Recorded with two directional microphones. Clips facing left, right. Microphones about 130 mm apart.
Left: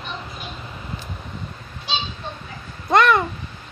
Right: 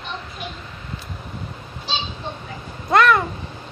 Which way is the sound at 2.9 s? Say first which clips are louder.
Even; centre (ahead or behind).